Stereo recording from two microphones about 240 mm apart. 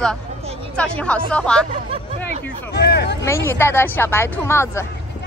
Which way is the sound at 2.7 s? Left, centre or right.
Left.